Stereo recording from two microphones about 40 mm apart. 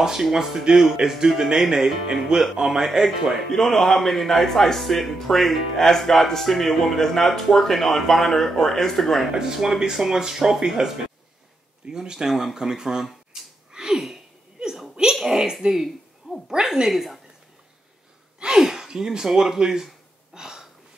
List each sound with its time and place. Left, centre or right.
0.0 s speech: centre
3.5 s speech: centre
9.3 s speech: centre
12.5 s a sound: centre
15.1 s a child's voice: centre
18.4 s speech: centre
20.3 s hiccup: centre